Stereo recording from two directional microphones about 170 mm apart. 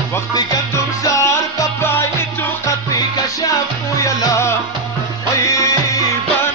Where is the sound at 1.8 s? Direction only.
15° left (ahead or behind).